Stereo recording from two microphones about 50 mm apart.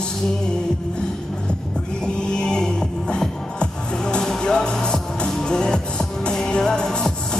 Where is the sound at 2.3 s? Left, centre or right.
Centre.